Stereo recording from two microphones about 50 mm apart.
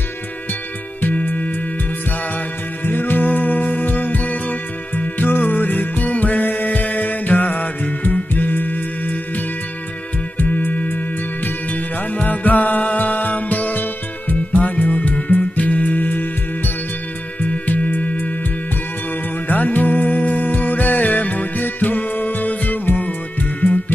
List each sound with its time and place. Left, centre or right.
1.0 s music: left
2.8 s music: left
10.3 s music: left
19.4 s music: left